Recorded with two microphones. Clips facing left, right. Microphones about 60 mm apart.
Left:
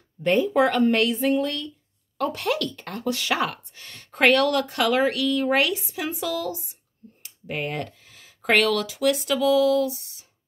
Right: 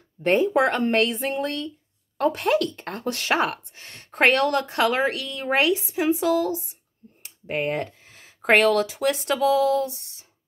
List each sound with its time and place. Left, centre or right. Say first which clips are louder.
0.2 s speech: even; right
2.1 s speech: right 4 dB; right